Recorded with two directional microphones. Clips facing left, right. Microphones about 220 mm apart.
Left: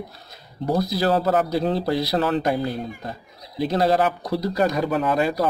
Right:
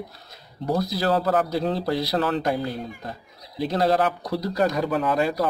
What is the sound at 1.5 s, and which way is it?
Speech, 10° left (ahead or behind).